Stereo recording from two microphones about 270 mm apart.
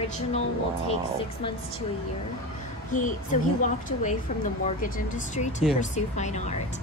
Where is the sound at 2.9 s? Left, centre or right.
Left.